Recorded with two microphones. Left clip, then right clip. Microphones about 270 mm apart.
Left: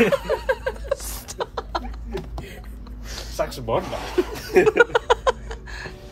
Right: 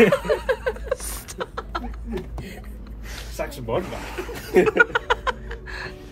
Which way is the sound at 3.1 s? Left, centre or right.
Left.